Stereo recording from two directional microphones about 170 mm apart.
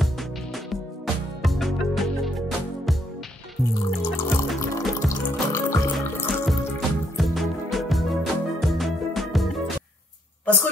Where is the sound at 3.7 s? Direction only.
15° left (ahead or behind).